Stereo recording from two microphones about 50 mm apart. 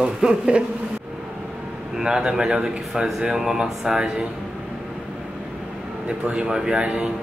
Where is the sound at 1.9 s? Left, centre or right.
Centre.